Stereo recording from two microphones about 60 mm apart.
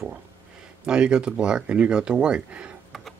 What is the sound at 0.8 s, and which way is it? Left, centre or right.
Speech, centre.